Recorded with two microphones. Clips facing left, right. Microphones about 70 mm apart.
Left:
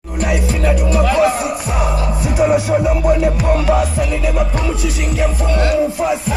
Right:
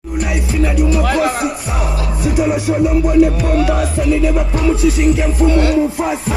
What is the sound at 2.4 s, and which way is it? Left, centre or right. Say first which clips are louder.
Music: left 1 dB; left.